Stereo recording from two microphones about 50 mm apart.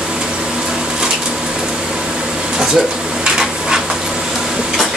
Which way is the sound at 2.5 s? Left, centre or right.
Centre.